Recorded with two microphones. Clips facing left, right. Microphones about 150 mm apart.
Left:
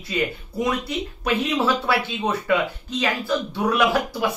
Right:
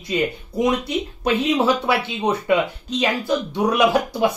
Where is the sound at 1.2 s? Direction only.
20° right (ahead or behind).